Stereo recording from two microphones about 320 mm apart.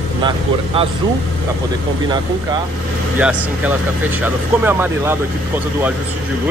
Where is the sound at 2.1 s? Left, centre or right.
Centre.